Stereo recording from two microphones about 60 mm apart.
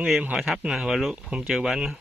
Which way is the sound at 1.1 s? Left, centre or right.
Centre.